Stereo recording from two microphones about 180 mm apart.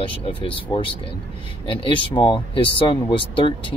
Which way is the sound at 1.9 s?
25° left (ahead or behind).